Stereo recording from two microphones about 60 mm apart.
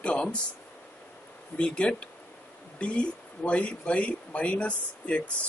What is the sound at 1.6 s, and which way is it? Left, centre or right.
Speech, centre.